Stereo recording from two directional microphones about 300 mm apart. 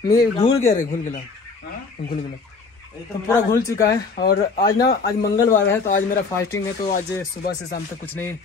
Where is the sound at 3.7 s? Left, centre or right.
Centre.